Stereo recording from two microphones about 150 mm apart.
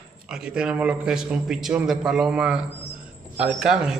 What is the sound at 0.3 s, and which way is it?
A man's voice, 5° right (ahead or behind).